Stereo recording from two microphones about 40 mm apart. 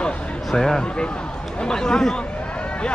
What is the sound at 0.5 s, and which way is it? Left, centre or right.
Speech, centre.